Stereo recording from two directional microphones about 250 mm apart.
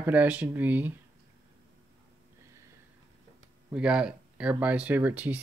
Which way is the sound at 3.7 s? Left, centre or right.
Centre.